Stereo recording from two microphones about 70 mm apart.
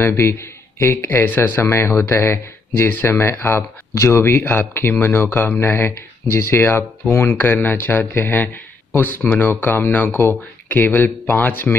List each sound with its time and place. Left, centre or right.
0.0 s speech: left